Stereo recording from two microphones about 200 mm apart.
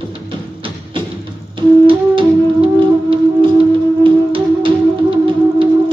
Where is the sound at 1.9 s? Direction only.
25° right (ahead or behind).